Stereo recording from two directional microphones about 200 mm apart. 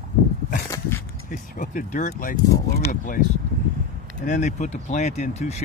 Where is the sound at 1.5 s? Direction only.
40° left (ahead or behind).